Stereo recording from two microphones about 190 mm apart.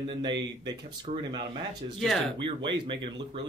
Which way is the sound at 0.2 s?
25° right (ahead or behind).